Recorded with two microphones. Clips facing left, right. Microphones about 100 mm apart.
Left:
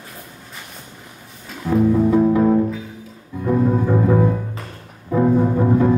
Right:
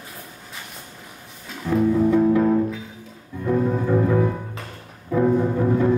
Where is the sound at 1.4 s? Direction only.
Centre (ahead or behind).